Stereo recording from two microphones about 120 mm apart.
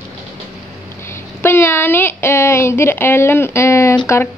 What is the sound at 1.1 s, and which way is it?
Speech, 20° left (ahead or behind).